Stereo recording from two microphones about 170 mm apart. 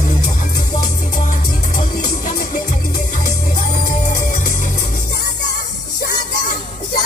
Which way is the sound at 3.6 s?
55° left (ahead or behind).